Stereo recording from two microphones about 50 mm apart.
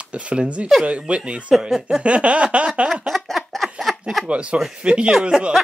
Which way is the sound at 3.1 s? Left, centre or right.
Centre.